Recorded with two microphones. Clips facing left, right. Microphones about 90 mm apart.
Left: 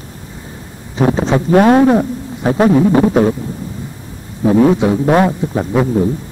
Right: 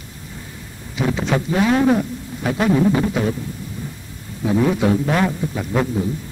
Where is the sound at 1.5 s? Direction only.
50° left (ahead or behind).